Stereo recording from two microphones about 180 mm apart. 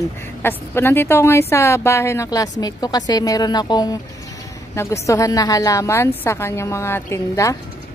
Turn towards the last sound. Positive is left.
turn(degrees=15)  # may be behind; listen again after turning